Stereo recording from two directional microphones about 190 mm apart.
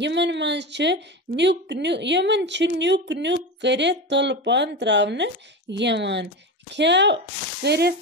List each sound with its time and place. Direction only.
0.0 s a woman's voice: 65° right (ahead or behind)